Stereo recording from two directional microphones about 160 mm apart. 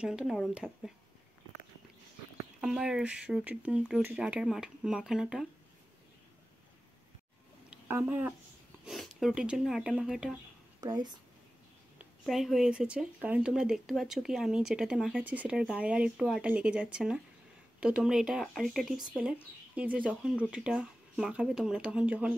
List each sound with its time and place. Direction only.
0.0 s speech: 5° right (ahead or behind)
2.6 s speech: 5° right (ahead or behind)
7.7 s speech: 10° right (ahead or behind)
8.8 s speech: centre (ahead or behind)
10.8 s a woman's voice: 25° right (ahead or behind)
12.0 s speech: centre (ahead or behind)